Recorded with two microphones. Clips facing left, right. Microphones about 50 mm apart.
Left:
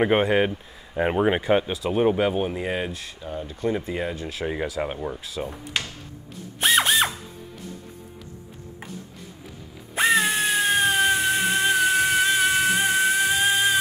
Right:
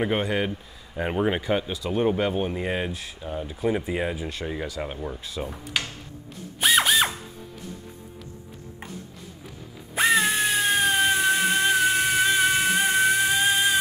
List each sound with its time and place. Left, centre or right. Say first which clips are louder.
0.2 s speech: left 5 dB; centre
4.8 s speech: left 3 dB; centre
5.2 s speech: left 1 dB; centre
6.6 s drill: even; centre
9.9 s music: left 1 dB; centre